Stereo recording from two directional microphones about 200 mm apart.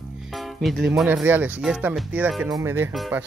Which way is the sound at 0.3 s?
Centre (ahead or behind).